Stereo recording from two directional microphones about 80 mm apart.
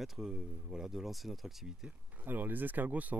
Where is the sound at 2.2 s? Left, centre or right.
Right.